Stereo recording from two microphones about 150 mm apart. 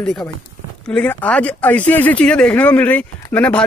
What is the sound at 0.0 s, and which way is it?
A man's voice, 5° left (ahead or behind).